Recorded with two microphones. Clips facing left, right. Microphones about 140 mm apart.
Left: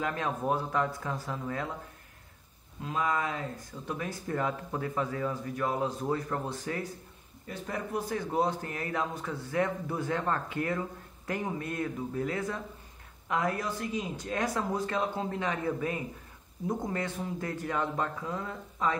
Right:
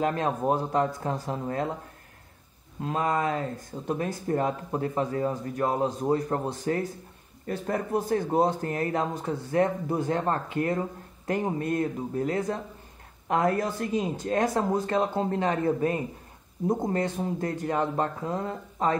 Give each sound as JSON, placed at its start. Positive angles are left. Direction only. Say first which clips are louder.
{"t": 0.0, "sound": "speech", "louder": "right 6 dB", "side_deg": -35}
{"t": 2.8, "sound": "a man's voice", "louder": "right 4 dB", "side_deg": -45}